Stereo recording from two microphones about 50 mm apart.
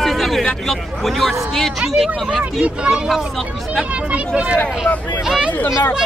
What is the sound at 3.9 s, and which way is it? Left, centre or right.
Speech, right.